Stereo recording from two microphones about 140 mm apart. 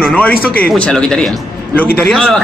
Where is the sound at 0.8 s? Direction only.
5° left (ahead or behind).